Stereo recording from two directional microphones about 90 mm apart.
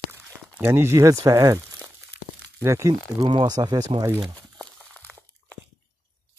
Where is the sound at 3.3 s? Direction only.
50° right (ahead or behind).